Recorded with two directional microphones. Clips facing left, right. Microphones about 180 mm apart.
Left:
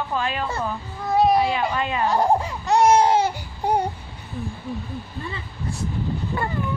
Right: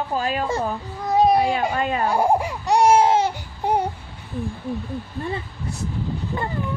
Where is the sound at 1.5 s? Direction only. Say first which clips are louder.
Right 2 dB; 45° right (ahead or behind).